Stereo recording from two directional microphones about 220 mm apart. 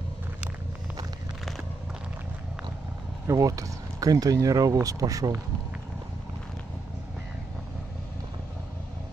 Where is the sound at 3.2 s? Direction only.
15° right (ahead or behind).